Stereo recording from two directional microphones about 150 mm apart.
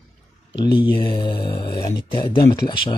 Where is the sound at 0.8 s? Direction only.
35° left (ahead or behind).